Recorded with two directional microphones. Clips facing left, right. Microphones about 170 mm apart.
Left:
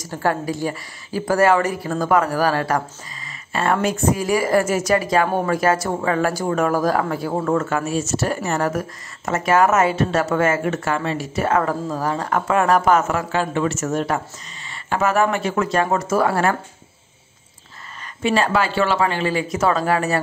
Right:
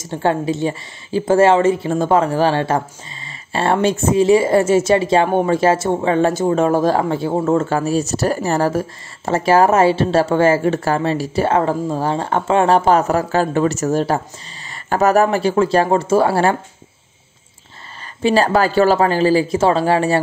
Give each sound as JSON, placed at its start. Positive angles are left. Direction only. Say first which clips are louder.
{"t": 0.0, "sound": "speech", "louder": "right 4 dB", "side_deg": -25}
{"t": 18.2, "sound": "speech", "louder": "right 4 dB", "side_deg": -35}